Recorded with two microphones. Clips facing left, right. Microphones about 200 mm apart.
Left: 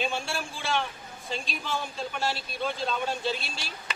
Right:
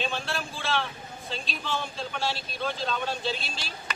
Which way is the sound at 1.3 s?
10° left (ahead or behind).